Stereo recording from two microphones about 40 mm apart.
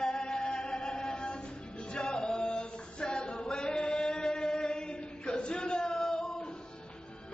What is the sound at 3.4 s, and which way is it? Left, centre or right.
Chant, centre.